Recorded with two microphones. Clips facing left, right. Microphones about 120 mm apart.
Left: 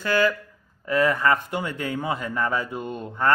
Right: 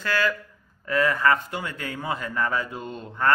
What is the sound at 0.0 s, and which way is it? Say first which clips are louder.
A man's voice: left 4 dB; 20° left (ahead or behind).